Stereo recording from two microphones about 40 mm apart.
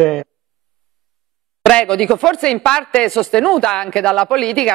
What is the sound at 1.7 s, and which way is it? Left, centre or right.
Speech, centre.